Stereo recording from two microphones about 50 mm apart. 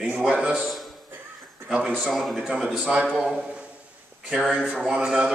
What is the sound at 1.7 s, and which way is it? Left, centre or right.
Speech, right.